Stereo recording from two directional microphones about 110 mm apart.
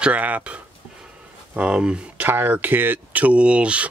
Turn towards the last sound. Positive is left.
turn(degrees=-10)  # may be behind; listen again after turning